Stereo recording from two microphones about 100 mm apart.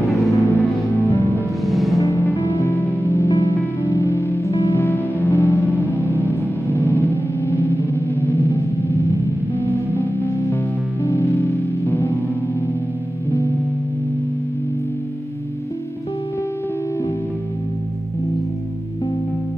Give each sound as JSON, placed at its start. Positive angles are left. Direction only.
{"t": 0.0, "sound": "music", "side_deg": 0}
{"t": 0.3, "sound": "music", "side_deg": 30}
{"t": 1.7, "sound": "music", "side_deg": 0}
{"t": 2.0, "sound": "music", "side_deg": 30}
{"t": 6.7, "sound": "gong", "side_deg": 25}
{"t": 9.6, "sound": "music", "side_deg": 20}